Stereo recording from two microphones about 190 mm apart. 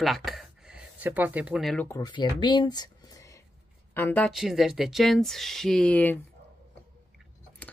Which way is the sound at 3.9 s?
10° left (ahead or behind).